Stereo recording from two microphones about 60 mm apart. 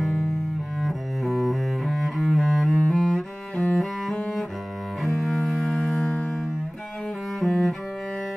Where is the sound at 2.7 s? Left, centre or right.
Centre.